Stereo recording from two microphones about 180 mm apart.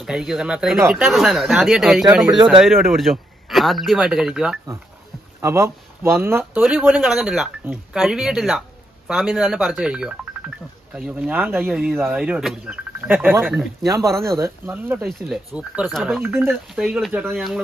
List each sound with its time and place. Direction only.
0.0 s speech: centre (ahead or behind)
5.4 s speech: 15° right (ahead or behind)
13.8 s speech: 20° right (ahead or behind); by 17.6 s centre (ahead or behind)